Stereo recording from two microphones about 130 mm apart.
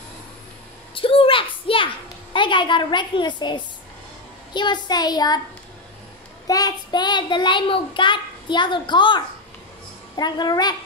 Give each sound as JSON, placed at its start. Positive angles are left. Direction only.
{"t": 0.9, "sound": "a sound", "side_deg": 45}
{"t": 2.3, "sound": "a child's voice", "side_deg": 40}
{"t": 6.4, "sound": "a child's voice", "side_deg": 30}